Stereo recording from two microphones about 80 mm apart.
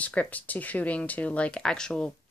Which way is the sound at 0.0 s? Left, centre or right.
Centre.